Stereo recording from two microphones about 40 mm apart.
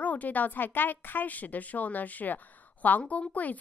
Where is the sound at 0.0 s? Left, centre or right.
Left.